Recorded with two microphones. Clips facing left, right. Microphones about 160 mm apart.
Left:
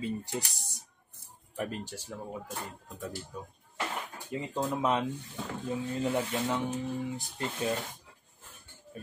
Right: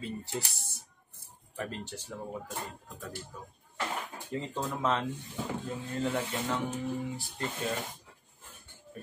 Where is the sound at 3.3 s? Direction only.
15° left (ahead or behind).